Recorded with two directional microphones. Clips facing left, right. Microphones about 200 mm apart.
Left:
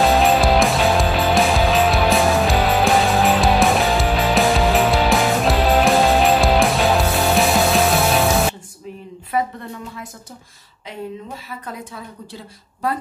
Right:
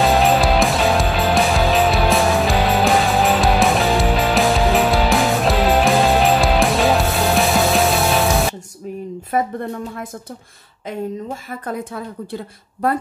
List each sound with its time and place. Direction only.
0.0 s music: centre (ahead or behind)
9.3 s a sound: 50° right (ahead or behind)
10.9 s a woman's voice: 45° right (ahead or behind)